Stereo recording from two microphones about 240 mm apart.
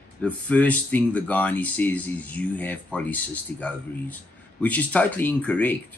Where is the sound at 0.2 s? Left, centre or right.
Centre.